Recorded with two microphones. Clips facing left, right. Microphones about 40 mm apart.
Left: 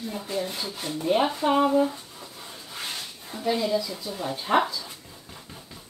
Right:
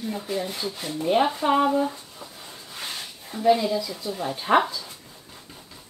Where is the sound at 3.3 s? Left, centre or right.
Right.